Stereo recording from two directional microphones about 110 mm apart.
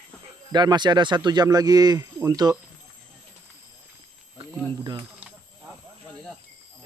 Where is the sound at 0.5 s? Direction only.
40° right (ahead or behind).